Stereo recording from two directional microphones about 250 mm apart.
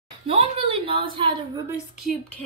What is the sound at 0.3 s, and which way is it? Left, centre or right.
Speech, right.